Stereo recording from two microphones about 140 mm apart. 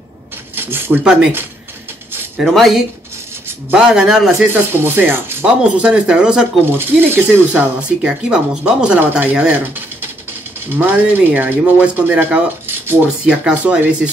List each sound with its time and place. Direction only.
0.6 s speech: 15° right (ahead or behind)
2.4 s a man's voice: centre (ahead or behind)
4.5 s speech: 15° right (ahead or behind)